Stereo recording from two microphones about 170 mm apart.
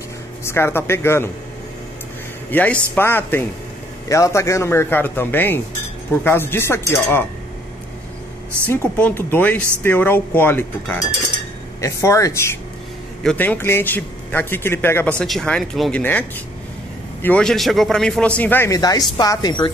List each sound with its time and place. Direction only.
0.4 s a man's voice: 15° left (ahead or behind)
2.5 s a man's voice: 10° left (ahead or behind)
8.6 s a man's voice: 10° left (ahead or behind)
13.2 s a man's voice: 5° left (ahead or behind); by 19.7 s 25° left (ahead or behind)